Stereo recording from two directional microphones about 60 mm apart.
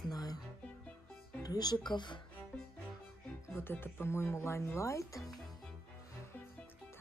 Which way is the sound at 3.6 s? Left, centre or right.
Left.